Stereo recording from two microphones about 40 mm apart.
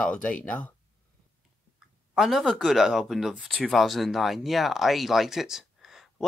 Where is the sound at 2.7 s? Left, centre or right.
Centre.